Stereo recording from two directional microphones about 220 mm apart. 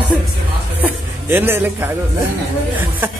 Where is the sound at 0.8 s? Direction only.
10° right (ahead or behind).